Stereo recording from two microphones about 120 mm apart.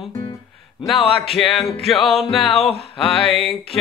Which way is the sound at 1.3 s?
Centre (ahead or behind).